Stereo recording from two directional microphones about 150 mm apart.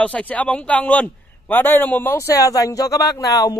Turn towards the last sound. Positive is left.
turn(degrees=25)  # may be behind; listen again after turning